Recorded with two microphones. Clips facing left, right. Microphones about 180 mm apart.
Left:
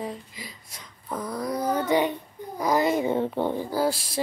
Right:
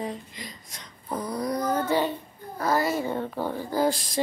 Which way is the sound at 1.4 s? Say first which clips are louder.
Even; 5° left (ahead or behind).